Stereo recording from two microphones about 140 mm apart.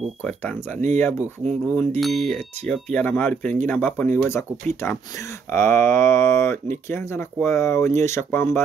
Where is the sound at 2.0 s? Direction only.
Centre (ahead or behind).